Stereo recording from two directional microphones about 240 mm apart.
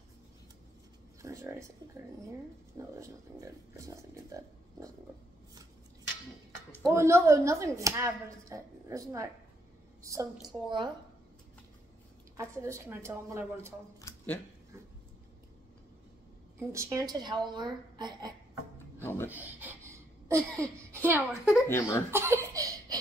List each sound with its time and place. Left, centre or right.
1.2 s a sound: centre
3.0 s speech: centre
6.9 s a woman's voice: centre
12.4 s speech: centre
14.0 s a sound: centre
16.5 s speech: centre
19.0 s speech: centre
19.3 s a sound: centre
21.0 s speech: centre
21.6 s speech: centre
22.1 s laughter: centre